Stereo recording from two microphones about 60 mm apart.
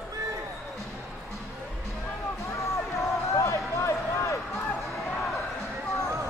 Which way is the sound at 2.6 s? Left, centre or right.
Left.